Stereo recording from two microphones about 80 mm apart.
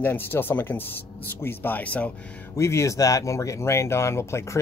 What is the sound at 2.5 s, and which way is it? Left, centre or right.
Speech, left.